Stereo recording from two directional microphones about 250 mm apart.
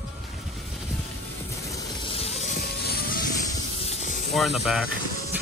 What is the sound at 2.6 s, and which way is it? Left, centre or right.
Music, left.